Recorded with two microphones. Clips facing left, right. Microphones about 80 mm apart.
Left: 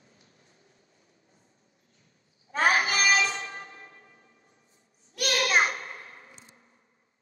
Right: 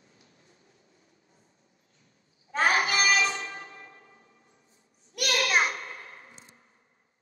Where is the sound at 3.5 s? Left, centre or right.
Left.